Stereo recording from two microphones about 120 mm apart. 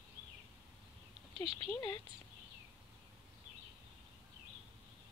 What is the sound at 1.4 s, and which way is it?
Speech, 50° right (ahead or behind).